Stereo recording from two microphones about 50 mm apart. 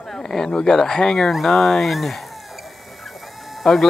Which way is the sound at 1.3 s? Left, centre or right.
Centre.